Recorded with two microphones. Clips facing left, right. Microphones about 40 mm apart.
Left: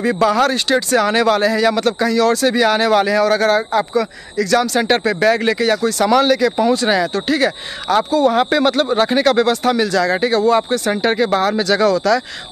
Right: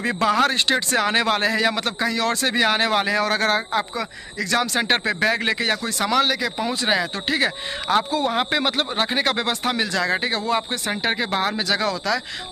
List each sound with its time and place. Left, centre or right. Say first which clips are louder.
0.0 s speech: left 5 dB; right
3.7 s speech: left 7 dB; right
6.0 s speech: left 6 dB; centre